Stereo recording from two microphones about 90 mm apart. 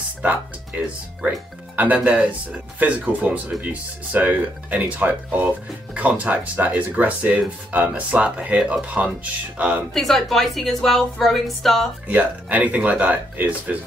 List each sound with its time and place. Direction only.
0.2 s speech: 15° right (ahead or behind)
9.9 s a woman's voice: centre (ahead or behind)
12.1 s speech: 20° right (ahead or behind)